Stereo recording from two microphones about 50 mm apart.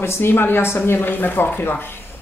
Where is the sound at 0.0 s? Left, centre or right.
Left.